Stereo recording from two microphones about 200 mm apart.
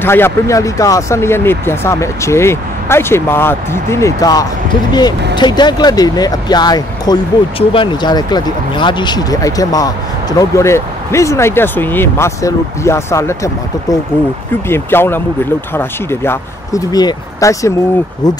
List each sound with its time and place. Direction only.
0.0 s speech: 10° left (ahead or behind)